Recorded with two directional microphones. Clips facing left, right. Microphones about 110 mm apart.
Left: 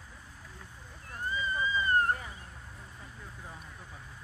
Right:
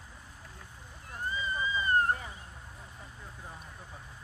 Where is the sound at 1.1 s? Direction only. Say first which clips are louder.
Left 1 dB; 20° right (ahead or behind).